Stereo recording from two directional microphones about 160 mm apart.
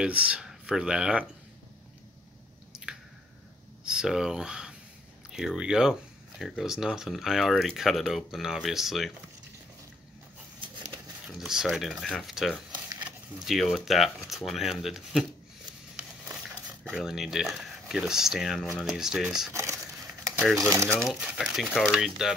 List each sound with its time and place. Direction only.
0.0 s speech: 5° right (ahead or behind)
2.7 s squish: 5° right (ahead or behind)
3.8 s speech: 5° right (ahead or behind)
11.2 s speech: 5° right (ahead or behind)
12.7 s a sound: 25° right (ahead or behind)
13.4 s speech: centre (ahead or behind)
16.9 s speech: centre (ahead or behind)
19.5 s speech: 20° right (ahead or behind)
20.9 s speech: centre (ahead or behind)